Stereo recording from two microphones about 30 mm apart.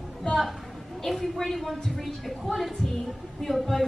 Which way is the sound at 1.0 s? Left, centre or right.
Centre.